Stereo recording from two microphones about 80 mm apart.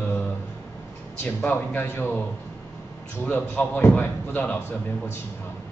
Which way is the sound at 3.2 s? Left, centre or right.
Centre.